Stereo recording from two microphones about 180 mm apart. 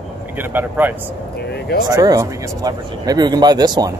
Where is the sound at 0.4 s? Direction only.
10° right (ahead or behind).